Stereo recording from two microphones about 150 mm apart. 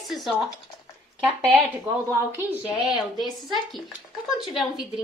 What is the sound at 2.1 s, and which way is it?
Speech, 15° right (ahead or behind).